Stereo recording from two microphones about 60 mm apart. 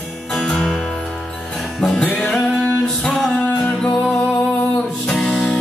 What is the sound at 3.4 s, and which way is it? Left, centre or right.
Music, left.